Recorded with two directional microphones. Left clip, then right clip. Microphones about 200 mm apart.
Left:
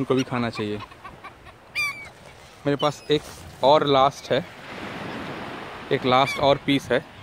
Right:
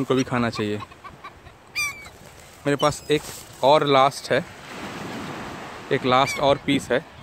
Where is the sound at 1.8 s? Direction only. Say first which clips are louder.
Even; 15° right (ahead or behind).